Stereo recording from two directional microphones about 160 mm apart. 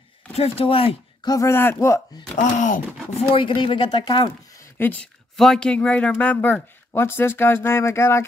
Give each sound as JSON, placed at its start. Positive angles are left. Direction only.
{"t": 0.3, "sound": "speech", "side_deg": 40}
{"t": 1.3, "sound": "speech", "side_deg": 15}
{"t": 2.3, "sound": "speech", "side_deg": 50}
{"t": 3.3, "sound": "speech", "side_deg": 30}
{"t": 4.7, "sound": "speech", "side_deg": 10}